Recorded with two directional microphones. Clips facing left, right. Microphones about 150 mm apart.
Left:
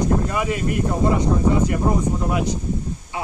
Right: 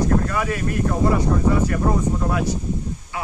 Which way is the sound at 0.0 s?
20° left (ahead or behind).